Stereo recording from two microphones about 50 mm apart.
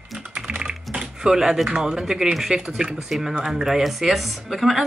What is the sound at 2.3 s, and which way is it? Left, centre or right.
Speech, centre.